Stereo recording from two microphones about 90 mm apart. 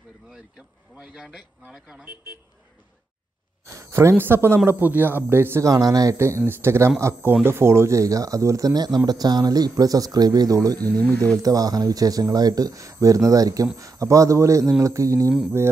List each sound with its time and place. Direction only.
0.9 s a man's voice: 10° right (ahead or behind)
3.6 s speech: 35° right (ahead or behind)
5.7 s speech: 40° right (ahead or behind)
6.1 s speech: 30° right (ahead or behind)